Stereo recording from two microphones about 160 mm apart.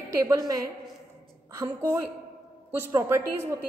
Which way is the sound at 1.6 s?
20° right (ahead or behind).